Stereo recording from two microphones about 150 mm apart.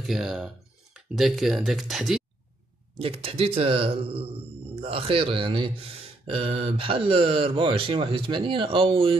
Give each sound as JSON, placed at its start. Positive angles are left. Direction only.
{"t": 0.0, "sound": "speech", "side_deg": 0}
{"t": 3.0, "sound": "speech", "side_deg": -40}